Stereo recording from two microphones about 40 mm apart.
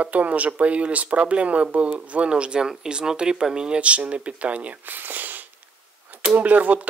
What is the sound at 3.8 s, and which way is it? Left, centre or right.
Speech, right.